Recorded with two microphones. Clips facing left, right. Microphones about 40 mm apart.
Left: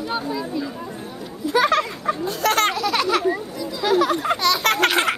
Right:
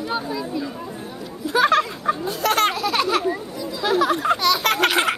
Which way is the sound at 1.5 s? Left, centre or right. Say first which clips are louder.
Right 1 dB; right.